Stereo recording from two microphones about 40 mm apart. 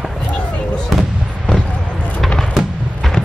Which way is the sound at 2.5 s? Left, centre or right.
Centre.